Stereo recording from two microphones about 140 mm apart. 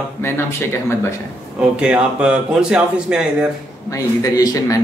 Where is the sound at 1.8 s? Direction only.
5° right (ahead or behind).